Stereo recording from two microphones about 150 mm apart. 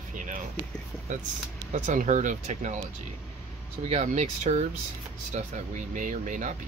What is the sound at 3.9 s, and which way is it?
Speech, 50° right (ahead or behind).